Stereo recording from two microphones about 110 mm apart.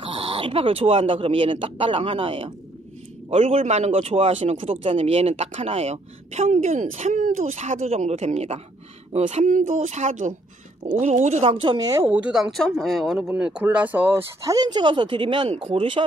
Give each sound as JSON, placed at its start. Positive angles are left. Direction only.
{"t": 0.0, "sound": "a man's voice", "side_deg": -60}
{"t": 11.9, "sound": "speech", "side_deg": -15}
{"t": 14.4, "sound": "speech", "side_deg": -35}